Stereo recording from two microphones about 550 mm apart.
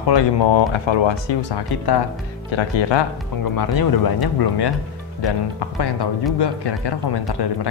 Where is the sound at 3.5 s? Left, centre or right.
Left.